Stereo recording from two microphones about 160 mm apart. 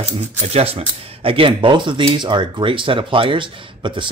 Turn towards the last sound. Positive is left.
turn(degrees=-30)  # may be behind; listen again after turning